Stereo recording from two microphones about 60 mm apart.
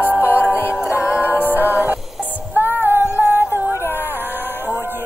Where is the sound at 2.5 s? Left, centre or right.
Right.